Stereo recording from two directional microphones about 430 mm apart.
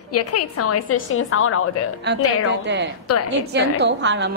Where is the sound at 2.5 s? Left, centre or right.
Right.